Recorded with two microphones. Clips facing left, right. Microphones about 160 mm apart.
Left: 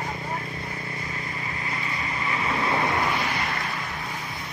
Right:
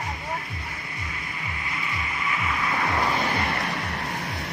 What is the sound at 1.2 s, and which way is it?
Vehicle, 35° left (ahead or behind).